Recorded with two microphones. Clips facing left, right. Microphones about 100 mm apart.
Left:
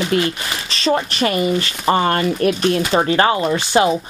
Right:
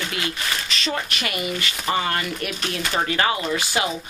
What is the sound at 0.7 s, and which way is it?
Speech, 35° left (ahead or behind).